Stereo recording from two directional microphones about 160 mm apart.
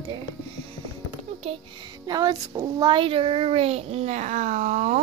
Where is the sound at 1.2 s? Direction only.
40° right (ahead or behind).